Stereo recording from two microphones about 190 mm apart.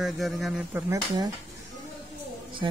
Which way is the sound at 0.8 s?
20° right (ahead or behind).